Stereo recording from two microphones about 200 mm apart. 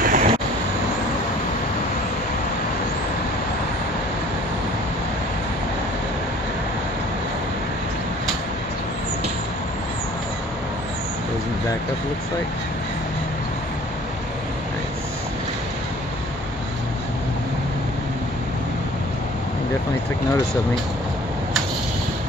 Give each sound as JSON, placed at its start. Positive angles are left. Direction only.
{"t": 0.0, "sound": "vehicle", "side_deg": -40}